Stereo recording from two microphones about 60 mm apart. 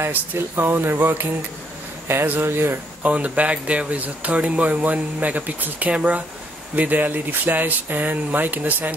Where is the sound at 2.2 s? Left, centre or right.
Right.